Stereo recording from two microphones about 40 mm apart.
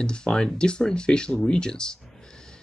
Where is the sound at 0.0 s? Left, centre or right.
Left.